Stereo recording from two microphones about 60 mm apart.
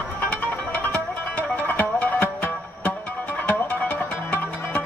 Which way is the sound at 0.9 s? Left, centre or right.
Left.